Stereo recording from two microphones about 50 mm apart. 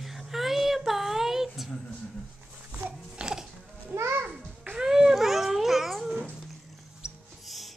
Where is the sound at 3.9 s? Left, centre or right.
Right.